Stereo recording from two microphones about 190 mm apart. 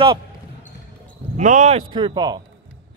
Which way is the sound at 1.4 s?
40° right (ahead or behind).